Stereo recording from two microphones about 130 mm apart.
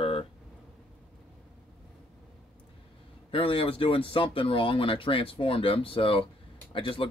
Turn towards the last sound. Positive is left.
turn(degrees=40)  # may be behind; listen again after turning